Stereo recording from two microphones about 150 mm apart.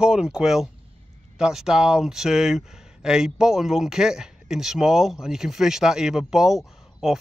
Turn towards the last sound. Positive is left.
turn(degrees=0)  # may be behind; listen again after turning